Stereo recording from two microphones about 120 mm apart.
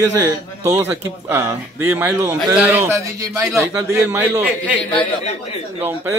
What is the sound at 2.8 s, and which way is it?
A man's voice, 25° right (ahead or behind).